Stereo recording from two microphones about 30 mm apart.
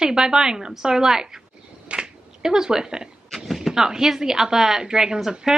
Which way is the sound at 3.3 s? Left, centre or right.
Centre.